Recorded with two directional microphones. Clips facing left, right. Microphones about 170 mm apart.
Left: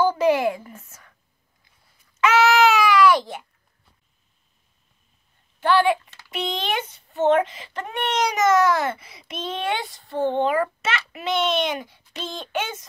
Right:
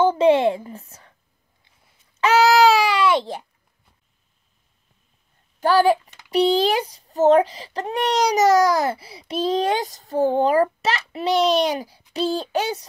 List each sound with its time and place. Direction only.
0.0 s speech: 25° right (ahead or behind)
2.1 s babbling: 35° right (ahead or behind)
5.6 s a child's voice: 40° right (ahead or behind)
6.0 s a sound: 15° right (ahead or behind)
6.3 s a child's voice: 35° right (ahead or behind)